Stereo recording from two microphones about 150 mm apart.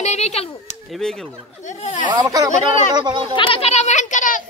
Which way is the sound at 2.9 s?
30° right (ahead or behind).